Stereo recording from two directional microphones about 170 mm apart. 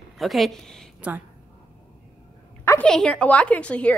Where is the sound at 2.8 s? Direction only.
5° left (ahead or behind).